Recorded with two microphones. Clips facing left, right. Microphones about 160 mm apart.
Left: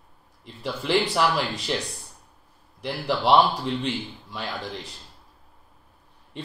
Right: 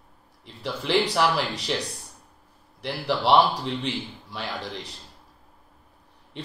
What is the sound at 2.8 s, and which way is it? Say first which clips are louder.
Speech: left 1 dB; 15° left (ahead or behind).